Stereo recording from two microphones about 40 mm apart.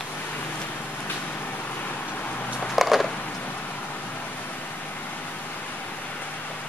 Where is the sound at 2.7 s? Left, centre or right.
Centre.